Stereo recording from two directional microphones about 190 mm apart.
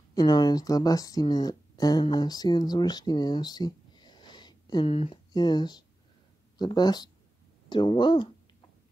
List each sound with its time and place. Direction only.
0.1 s speech: 20° left (ahead or behind)